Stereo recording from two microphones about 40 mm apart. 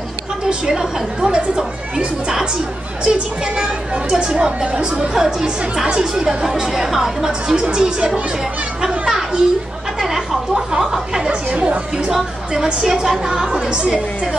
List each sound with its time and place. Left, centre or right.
0.7 s a woman's voice: centre
3.0 s a woman's voice: right
5.1 s a woman's voice: centre
8.8 s children playing: centre
9.9 s a sound: centre
11.5 s speech: right
12.6 s a woman's voice: centre